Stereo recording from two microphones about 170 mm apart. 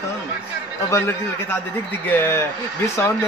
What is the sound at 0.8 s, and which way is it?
A man's voice, 15° left (ahead or behind).